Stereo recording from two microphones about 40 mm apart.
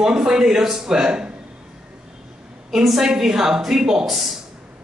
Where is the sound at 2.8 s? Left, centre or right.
Centre.